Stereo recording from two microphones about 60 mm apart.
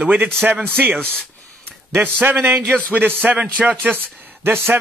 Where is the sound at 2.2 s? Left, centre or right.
Right.